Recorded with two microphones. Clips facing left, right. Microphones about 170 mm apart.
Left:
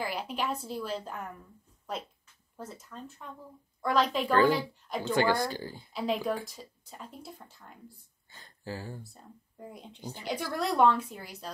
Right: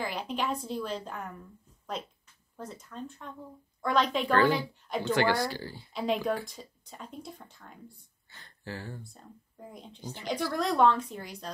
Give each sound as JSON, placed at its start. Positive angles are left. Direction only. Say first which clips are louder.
{"t": 0.0, "sound": "speech", "louder": "right 1 dB", "side_deg": 5}
{"t": 2.5, "sound": "speech", "louder": "right 2 dB", "side_deg": 5}
{"t": 5.2, "sound": "speech", "louder": "even", "side_deg": 15}
{"t": 5.9, "sound": "speech", "louder": "right 1 dB", "side_deg": 0}